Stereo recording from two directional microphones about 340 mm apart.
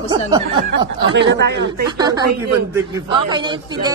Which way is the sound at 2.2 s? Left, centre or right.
Right.